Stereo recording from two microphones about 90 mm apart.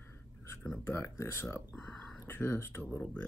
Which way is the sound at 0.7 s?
35° left (ahead or behind).